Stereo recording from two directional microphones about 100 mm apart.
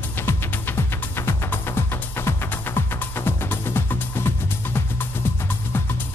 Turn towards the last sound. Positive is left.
turn(degrees=20)  # may be behind; listen again after turning